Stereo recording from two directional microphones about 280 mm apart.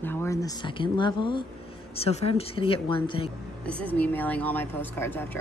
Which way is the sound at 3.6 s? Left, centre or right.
Centre.